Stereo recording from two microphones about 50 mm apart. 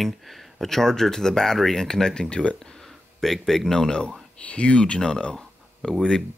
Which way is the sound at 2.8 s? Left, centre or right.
Centre.